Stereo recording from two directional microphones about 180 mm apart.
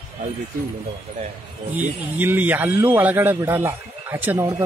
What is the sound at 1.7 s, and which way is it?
Speech, 10° right (ahead or behind).